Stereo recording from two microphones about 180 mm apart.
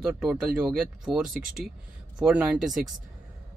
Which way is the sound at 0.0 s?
5° right (ahead or behind).